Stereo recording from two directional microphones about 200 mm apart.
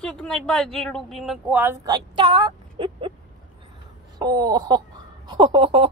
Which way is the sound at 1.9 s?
25° right (ahead or behind).